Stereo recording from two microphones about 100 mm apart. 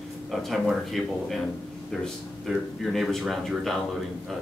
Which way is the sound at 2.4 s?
Centre (ahead or behind).